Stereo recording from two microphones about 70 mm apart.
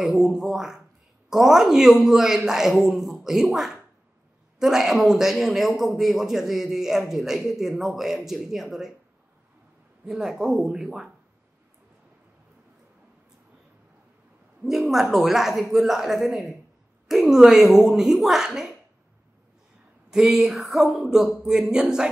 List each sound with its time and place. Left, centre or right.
0.0 s a man's voice: centre
10.0 s a man's voice: centre
14.6 s a man's voice: centre
20.1 s a man's voice: centre